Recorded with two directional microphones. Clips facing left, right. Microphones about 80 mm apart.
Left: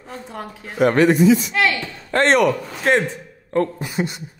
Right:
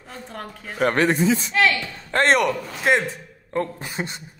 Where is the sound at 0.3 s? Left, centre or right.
Centre.